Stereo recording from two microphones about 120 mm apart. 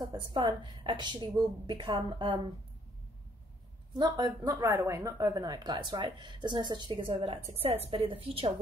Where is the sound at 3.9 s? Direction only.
35° right (ahead or behind).